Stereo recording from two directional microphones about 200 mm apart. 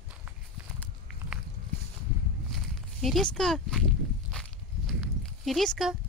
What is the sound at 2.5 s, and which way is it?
Walk, centre (ahead or behind).